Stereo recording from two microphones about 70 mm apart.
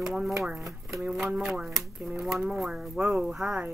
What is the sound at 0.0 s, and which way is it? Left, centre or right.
A woman's voice, centre.